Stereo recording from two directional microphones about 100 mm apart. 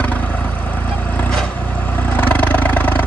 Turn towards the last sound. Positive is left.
turn(degrees=20)  # may be behind; listen again after turning